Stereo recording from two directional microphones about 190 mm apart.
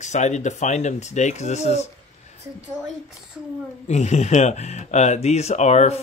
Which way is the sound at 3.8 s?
35° left (ahead or behind).